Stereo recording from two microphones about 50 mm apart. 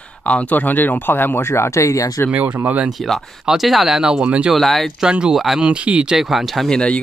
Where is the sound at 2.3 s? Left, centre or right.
Right.